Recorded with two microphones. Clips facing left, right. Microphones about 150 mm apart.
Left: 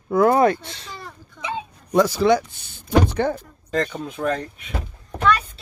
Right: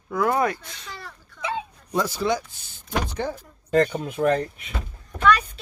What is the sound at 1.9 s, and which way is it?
Speech, 85° left.